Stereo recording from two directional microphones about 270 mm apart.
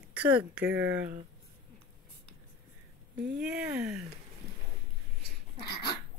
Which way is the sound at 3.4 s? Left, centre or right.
Centre.